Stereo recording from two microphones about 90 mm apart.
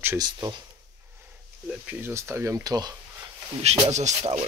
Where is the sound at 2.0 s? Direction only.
30° right (ahead or behind).